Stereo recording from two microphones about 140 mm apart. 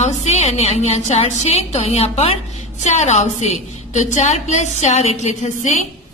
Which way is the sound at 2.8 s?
55° left (ahead or behind).